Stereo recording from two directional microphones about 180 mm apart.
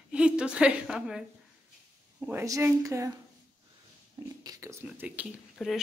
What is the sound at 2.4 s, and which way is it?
Speech, 20° right (ahead or behind).